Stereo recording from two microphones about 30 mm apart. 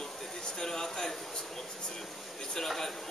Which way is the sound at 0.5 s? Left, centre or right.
Centre.